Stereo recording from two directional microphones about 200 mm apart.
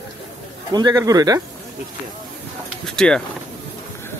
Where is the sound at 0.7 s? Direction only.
20° right (ahead or behind).